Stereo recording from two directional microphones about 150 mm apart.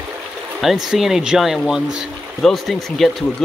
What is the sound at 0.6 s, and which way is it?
Speech, 5° right (ahead or behind).